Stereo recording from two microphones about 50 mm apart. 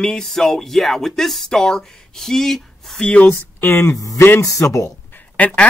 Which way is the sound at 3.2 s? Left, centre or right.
Left.